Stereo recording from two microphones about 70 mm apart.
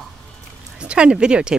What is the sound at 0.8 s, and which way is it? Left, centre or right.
Speech, centre.